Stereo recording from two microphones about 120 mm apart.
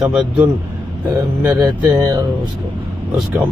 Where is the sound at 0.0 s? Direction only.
5° right (ahead or behind).